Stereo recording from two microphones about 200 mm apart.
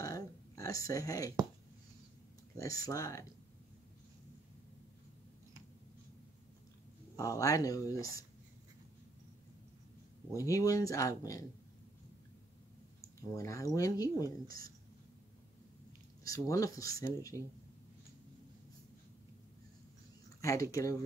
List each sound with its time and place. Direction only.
0.0 s a sound: 15° left (ahead or behind)
2.6 s speech: 15° left (ahead or behind)
7.2 s speech: 15° left (ahead or behind)
10.3 s speech: 15° left (ahead or behind)
13.0 s speech: 15° left (ahead or behind)
16.3 s speech: 15° left (ahead or behind)
20.3 s speech: 15° left (ahead or behind)